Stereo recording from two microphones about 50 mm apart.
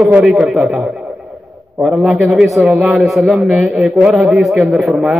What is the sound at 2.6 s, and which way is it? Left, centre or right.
Speech, centre.